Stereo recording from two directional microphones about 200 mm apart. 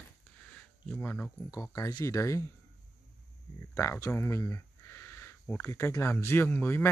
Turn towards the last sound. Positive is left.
turn(degrees=10)  # may be behind; listen again after turning